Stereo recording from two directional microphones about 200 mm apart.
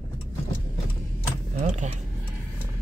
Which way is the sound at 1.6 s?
35° right (ahead or behind).